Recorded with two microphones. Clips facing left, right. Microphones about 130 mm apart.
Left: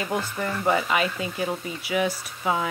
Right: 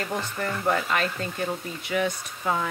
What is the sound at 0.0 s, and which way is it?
Speech, 5° left (ahead or behind).